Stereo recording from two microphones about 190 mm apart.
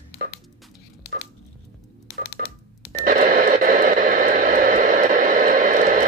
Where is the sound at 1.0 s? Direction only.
55° left (ahead or behind).